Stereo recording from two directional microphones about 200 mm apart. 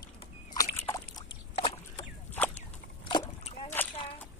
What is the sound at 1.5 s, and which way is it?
Boat, 25° left (ahead or behind).